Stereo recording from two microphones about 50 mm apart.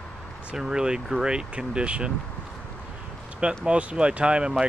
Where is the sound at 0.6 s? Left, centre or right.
Centre.